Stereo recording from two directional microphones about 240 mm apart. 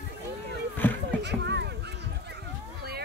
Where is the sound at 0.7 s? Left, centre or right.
Centre.